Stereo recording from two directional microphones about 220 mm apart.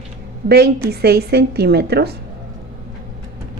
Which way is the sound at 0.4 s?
45° right (ahead or behind).